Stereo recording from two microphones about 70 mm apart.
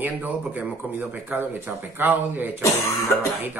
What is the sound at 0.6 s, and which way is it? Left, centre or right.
A man's voice, right.